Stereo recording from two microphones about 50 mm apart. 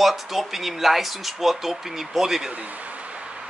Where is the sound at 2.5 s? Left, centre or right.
Right.